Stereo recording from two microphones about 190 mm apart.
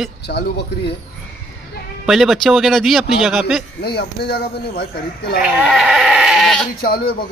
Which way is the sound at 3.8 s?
55° left (ahead or behind).